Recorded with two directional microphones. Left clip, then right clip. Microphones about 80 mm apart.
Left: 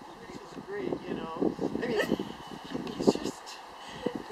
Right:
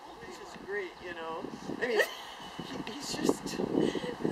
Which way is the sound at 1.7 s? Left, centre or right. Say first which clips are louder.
Right 6 dB; right.